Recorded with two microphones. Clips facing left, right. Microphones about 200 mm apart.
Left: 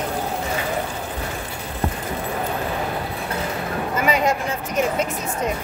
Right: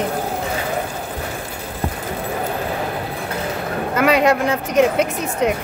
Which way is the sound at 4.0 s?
70° right (ahead or behind).